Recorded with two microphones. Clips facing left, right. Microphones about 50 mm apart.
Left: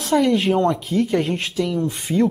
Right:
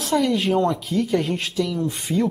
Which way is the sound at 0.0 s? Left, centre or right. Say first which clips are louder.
Left 3 dB; centre.